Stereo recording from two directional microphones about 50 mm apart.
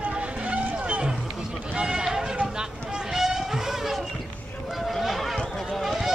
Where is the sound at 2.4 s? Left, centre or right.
Centre.